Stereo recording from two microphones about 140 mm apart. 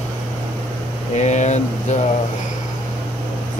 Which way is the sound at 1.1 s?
55° left (ahead or behind).